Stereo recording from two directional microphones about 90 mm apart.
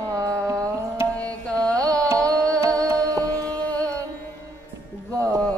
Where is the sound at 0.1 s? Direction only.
40° right (ahead or behind).